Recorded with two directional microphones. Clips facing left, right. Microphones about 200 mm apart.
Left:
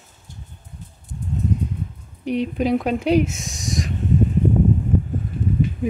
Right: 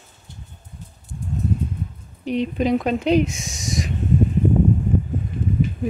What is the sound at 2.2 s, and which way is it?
Speech, 10° left (ahead or behind).